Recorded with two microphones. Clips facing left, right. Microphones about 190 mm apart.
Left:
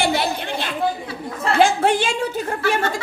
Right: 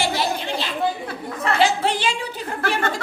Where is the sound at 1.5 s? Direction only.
50° left (ahead or behind).